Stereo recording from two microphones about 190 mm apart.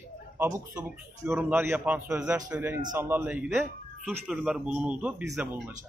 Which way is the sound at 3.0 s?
10° right (ahead or behind).